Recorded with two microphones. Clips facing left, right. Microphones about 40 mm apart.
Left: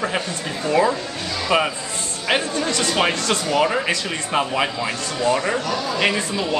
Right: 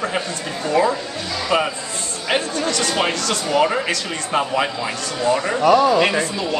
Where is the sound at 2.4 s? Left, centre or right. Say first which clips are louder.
Right 1 dB; left.